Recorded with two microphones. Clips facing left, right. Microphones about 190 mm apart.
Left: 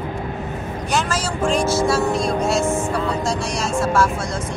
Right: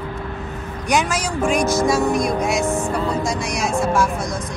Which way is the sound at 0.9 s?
15° right (ahead or behind).